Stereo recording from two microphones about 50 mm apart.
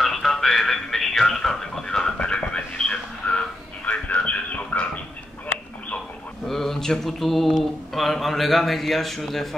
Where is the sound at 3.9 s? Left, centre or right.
Left.